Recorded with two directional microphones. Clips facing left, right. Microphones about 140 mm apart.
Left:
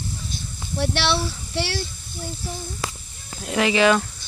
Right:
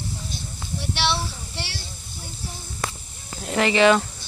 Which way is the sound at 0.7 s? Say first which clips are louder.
Left 3 dB; 90° left.